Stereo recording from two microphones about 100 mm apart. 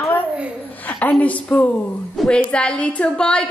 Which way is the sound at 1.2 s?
15° left (ahead or behind).